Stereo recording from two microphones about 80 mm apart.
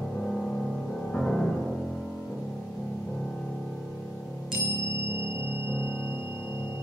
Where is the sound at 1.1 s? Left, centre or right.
Centre.